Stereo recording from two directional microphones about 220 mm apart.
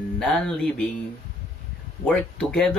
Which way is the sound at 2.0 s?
5° left (ahead or behind).